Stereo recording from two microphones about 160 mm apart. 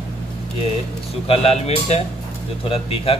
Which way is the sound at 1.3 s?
40° left (ahead or behind).